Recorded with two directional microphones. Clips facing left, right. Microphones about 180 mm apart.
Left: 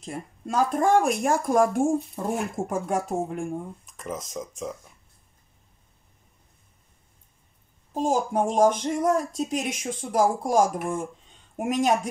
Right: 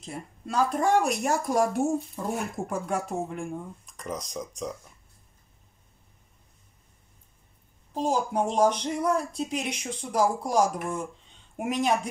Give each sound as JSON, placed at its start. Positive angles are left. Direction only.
{"t": 0.0, "sound": "speech", "side_deg": 50}
{"t": 3.8, "sound": "speech", "side_deg": 0}
{"t": 7.9, "sound": "speech", "side_deg": 45}